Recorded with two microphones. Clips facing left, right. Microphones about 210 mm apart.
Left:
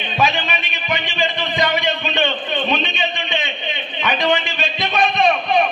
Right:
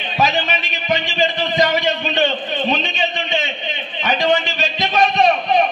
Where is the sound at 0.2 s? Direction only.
40° right (ahead or behind).